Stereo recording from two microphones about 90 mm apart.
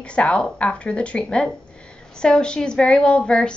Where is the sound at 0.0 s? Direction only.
10° left (ahead or behind).